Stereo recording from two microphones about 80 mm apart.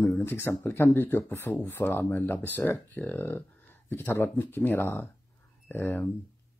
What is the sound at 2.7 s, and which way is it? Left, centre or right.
Speech, centre.